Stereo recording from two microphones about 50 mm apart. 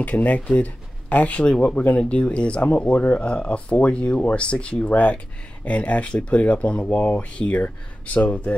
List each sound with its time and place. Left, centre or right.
0.0 s speech: left